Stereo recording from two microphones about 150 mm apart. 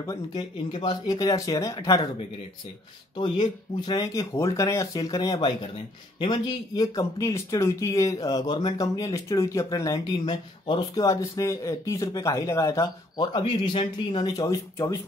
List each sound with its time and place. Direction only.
0.0 s speech: 25° left (ahead or behind)
3.2 s speech: 30° left (ahead or behind)
11.1 s speech: 20° left (ahead or behind)